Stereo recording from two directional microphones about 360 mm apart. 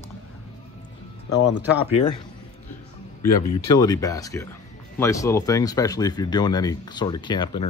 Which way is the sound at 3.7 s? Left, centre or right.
Centre.